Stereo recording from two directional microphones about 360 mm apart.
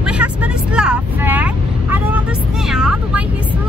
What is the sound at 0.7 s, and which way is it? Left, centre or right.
Vehicle, centre.